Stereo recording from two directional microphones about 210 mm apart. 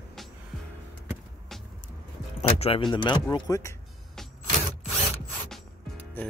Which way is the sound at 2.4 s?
30° left (ahead or behind).